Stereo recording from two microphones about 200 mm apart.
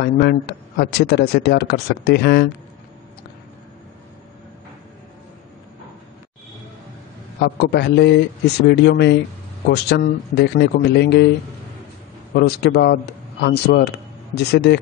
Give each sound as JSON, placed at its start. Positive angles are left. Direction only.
{"t": 0.0, "sound": "speech", "side_deg": 55}
{"t": 7.3, "sound": "speech", "side_deg": 55}
{"t": 12.4, "sound": "speech", "side_deg": 55}